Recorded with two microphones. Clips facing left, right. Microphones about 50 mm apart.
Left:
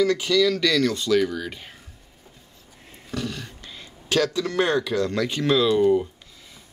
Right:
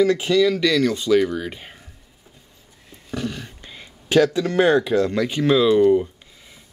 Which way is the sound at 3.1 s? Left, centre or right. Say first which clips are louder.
Right 2 dB; centre.